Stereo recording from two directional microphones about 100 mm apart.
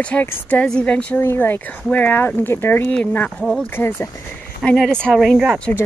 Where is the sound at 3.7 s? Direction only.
20° left (ahead or behind).